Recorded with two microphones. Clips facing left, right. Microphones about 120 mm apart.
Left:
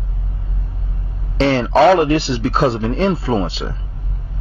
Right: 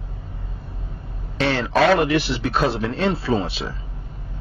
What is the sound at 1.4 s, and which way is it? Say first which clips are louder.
Speech: left 6 dB; 30° left (ahead or behind).